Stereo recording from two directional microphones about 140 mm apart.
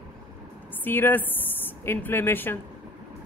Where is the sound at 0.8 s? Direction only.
15° left (ahead or behind).